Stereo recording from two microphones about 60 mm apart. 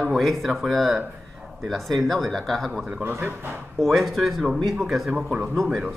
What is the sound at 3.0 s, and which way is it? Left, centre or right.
Speech, right.